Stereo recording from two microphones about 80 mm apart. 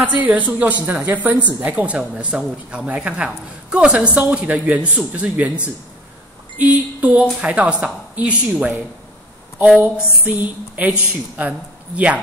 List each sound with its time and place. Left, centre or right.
0.0 s speech: right
6.6 s a woman's voice: centre